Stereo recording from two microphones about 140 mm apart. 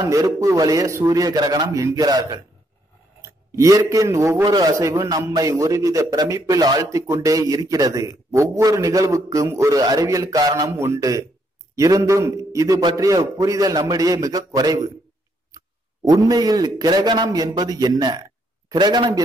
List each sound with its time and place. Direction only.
0.0 s a man's voice: 25° right (ahead or behind)